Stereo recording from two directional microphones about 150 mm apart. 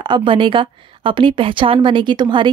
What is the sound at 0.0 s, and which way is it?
A woman's voice, 30° right (ahead or behind).